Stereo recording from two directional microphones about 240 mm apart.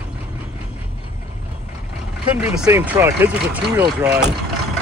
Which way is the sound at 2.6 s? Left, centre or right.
Centre.